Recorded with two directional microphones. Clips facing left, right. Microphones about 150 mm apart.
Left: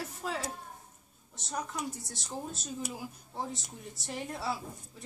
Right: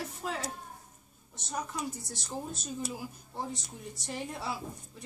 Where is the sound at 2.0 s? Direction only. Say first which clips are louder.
Right 1 dB; centre (ahead or behind).